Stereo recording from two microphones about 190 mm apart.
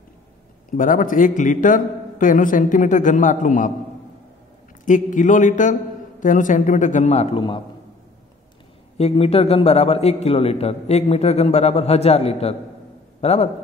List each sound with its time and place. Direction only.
0.7 s a man's voice: 45° left (ahead or behind)
4.8 s a man's voice: 40° left (ahead or behind)
8.9 s a man's voice: 30° left (ahead or behind)